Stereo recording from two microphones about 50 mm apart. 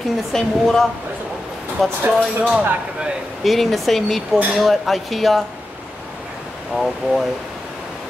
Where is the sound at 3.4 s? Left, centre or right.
Centre.